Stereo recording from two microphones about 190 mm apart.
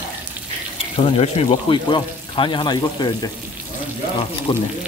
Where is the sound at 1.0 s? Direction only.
30° left (ahead or behind).